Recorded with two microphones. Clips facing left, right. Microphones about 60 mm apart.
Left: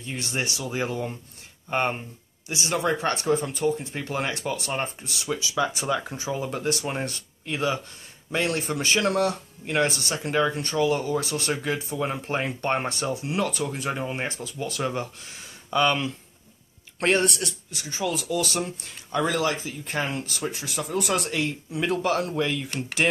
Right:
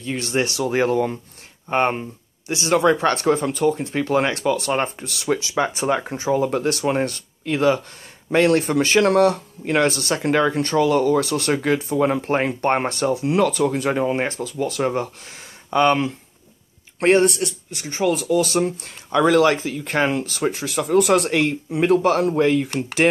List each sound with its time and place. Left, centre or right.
0.0 s speech: right
17.0 s a man's voice: right
17.7 s speech: right